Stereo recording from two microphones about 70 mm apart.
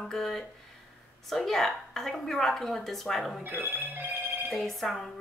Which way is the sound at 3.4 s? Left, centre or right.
Right.